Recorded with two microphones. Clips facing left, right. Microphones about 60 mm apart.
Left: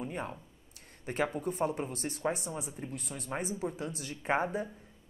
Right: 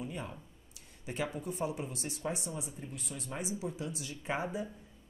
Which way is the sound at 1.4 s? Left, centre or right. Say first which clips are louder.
Left 4 dB; left.